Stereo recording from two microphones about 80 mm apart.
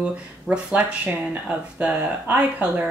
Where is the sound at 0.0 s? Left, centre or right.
Centre.